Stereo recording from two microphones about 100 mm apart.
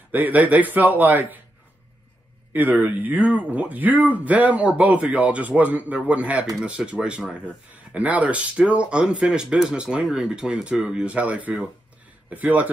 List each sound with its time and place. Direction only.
0.1 s a man's voice: 15° right (ahead or behind)
2.5 s a man's voice: 20° right (ahead or behind)